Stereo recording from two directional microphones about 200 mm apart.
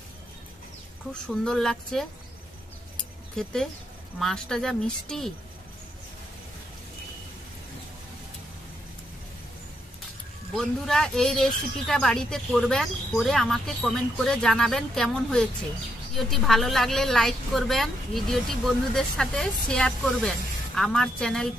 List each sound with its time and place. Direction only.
1.4 s speech: 5° left (ahead or behind)
3.4 s speech: 5° left (ahead or behind)
10.5 s speech: centre (ahead or behind)